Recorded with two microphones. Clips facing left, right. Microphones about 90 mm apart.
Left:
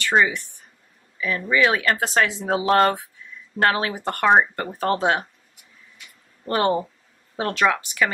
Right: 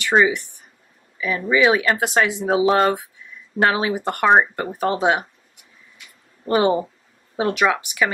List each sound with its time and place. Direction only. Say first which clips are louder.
0.0 s speech: right 3 dB; 15° right (ahead or behind)
6.4 s speech: right 3 dB; 15° right (ahead or behind)